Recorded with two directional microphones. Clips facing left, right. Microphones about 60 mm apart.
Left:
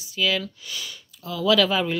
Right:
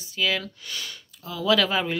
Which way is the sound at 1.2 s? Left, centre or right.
Right.